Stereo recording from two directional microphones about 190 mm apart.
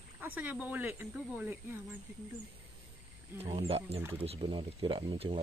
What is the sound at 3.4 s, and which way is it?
Speech, 30° right (ahead or behind).